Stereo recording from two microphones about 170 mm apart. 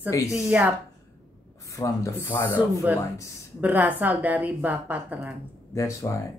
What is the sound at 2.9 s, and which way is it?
A woman's voice, 10° right (ahead or behind).